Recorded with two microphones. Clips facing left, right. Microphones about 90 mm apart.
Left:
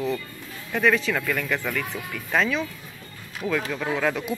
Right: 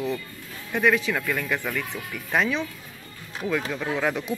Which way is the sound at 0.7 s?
15° right (ahead or behind).